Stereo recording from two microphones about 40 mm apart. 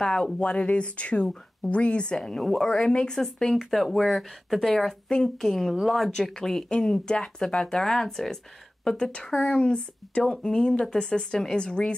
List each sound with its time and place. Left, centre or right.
0.0 s speech: left
2.6 s speech: centre
3.2 s speech: centre
6.7 s speech: centre
8.8 s speech: left
9.3 s speech: centre
9.6 s speech: left
10.4 s speech: centre